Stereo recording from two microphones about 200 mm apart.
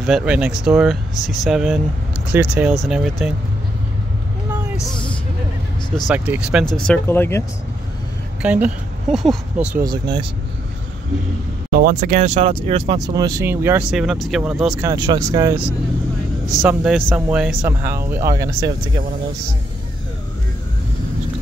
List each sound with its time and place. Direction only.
0.0 s speech: 5° right (ahead or behind)
4.7 s speech: 5° left (ahead or behind)
6.0 s speech: 10° right (ahead or behind)
6.9 s speech: 10° left (ahead or behind)
8.4 s speech: 5° right (ahead or behind)
9.8 s speech: 20° right (ahead or behind)
11.7 s speech: 50° right (ahead or behind); by 13.0 s 30° right (ahead or behind)
13.0 s speech: 20° right (ahead or behind); by 14.9 s 5° right (ahead or behind)
14.9 s speech: 20° right (ahead or behind)